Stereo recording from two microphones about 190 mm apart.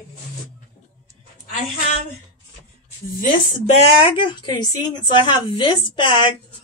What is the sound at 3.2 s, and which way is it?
Speech, 35° left (ahead or behind).